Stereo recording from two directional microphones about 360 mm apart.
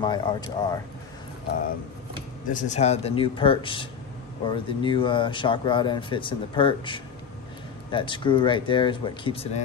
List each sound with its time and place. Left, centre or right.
0.0 s speech: centre
2.5 s speech: centre